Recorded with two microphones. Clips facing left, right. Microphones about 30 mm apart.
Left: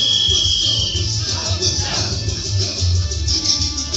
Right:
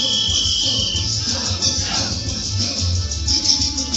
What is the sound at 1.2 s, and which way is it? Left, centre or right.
Music, left.